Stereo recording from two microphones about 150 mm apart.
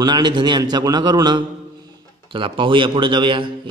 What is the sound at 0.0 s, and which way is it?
A man's voice, 30° right (ahead or behind).